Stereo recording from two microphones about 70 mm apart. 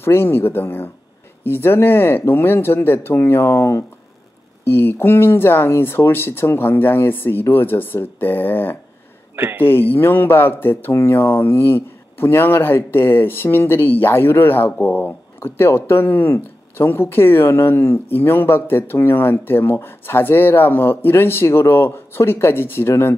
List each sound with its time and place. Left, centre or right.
0.0 s speech: left
9.3 s speech: right
9.6 s speech: left